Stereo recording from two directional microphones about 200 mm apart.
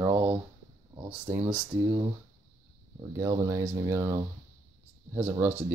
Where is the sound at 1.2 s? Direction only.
10° right (ahead or behind).